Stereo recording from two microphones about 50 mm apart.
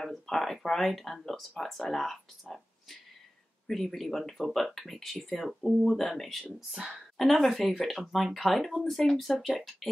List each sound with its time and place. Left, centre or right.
0.0 s speech: centre
3.6 s speech: centre
6.8 s a woman's voice: centre
7.2 s speech: centre